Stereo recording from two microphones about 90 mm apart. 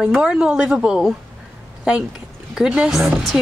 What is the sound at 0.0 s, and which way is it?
A woman's voice, 10° right (ahead or behind).